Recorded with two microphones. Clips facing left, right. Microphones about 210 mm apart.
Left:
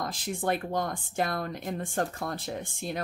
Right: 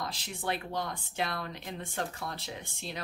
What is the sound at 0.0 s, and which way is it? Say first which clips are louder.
Speech: left 6 dB; 50° left (ahead or behind).